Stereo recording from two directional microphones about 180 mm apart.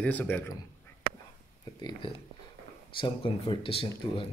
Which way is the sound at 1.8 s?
25° left (ahead or behind).